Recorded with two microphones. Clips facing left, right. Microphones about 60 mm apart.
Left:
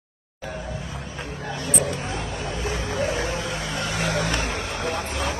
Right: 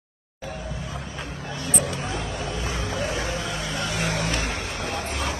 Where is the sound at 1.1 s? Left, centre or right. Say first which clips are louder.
Left 2 dB; left.